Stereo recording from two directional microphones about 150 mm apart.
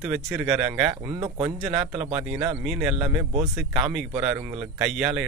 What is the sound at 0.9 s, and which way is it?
Speech, 25° right (ahead or behind).